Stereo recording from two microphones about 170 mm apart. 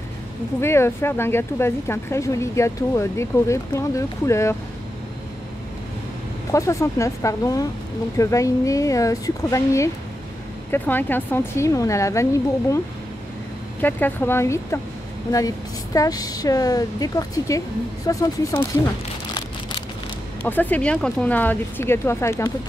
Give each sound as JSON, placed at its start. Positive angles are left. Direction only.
{"t": 0.6, "sound": "speech", "side_deg": 15}
{"t": 6.5, "sound": "a woman's voice", "side_deg": 15}
{"t": 13.7, "sound": "a woman's voice", "side_deg": 10}
{"t": 20.4, "sound": "speech", "side_deg": 10}